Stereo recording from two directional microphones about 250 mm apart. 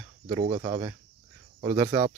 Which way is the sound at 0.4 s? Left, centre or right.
Right.